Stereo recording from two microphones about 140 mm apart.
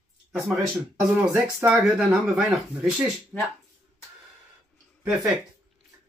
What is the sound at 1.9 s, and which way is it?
Speech, centre (ahead or behind).